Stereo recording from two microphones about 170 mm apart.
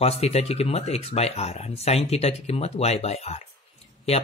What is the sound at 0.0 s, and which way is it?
Speech, 35° left (ahead or behind).